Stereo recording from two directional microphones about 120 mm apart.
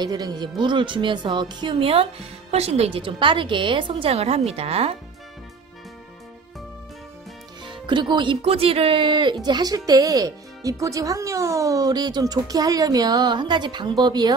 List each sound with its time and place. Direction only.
0.0 s a woman's voice: 35° right (ahead or behind); by 4.9 s 55° right (ahead or behind)
7.6 s speech: 40° right (ahead or behind)
8.4 s speech: 55° right (ahead or behind); by 14.3 s 35° right (ahead or behind)